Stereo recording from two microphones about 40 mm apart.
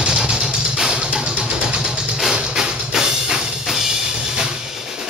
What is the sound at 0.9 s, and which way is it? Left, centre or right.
Music, right.